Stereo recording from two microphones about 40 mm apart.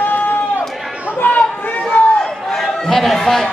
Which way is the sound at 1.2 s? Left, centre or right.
Left.